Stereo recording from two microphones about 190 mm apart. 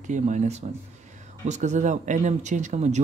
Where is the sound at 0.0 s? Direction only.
40° right (ahead or behind).